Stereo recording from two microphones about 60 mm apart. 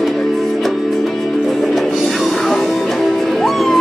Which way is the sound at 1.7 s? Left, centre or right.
Centre.